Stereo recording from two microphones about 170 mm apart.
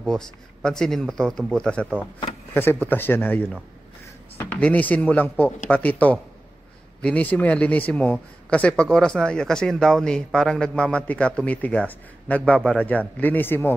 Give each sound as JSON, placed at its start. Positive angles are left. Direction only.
{"t": 0.0, "sound": "a man's voice", "side_deg": 0}